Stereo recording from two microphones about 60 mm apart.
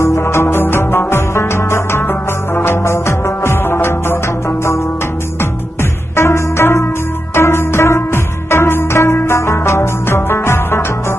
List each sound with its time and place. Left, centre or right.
0.0 s music: left
5.4 s music: left